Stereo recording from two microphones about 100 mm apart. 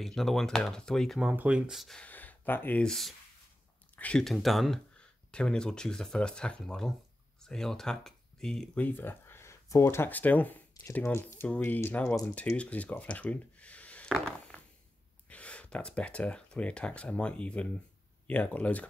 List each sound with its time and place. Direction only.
0.0 s speech: centre (ahead or behind)
1.2 s speech: 15° right (ahead or behind)
1.7 s speech: centre (ahead or behind)
2.0 s speech: 15° left (ahead or behind)
2.8 s speech: centre (ahead or behind)
3.9 s a sound: 15° left (ahead or behind)
4.2 s speech: centre (ahead or behind)
8.8 s speech: 20° left (ahead or behind)
14.0 s a sound: 5° left (ahead or behind)
15.2 s speech: 10° left (ahead or behind)